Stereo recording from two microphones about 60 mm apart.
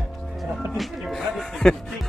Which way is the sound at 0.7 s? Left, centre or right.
Centre.